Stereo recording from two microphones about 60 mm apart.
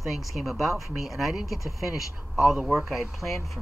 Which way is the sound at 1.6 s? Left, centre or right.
Left.